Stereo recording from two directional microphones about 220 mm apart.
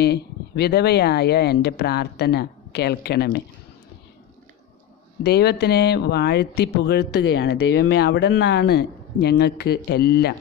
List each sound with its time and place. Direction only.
0.0 s speech: 50° left (ahead or behind)
5.2 s speech: 50° left (ahead or behind)